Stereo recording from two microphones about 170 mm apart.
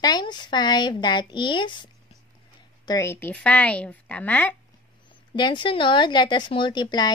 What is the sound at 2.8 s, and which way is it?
A woman's voice, 15° left (ahead or behind).